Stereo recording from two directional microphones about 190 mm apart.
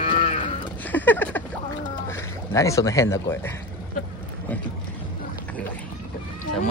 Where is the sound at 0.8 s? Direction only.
10° left (ahead or behind).